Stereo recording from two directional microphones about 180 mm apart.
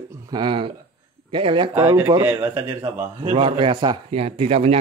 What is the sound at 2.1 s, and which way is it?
Speech, 20° right (ahead or behind).